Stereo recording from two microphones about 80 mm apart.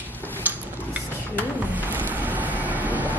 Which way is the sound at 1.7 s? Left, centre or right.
Right.